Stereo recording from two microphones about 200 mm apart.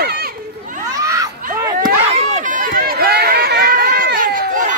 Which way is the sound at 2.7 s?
50° right (ahead or behind).